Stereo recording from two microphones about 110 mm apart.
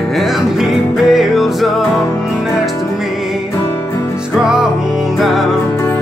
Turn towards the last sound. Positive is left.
turn(degrees=0)  # may be behind; listen again after turning